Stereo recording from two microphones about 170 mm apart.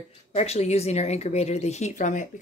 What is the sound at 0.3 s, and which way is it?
Speech, 40° left (ahead or behind).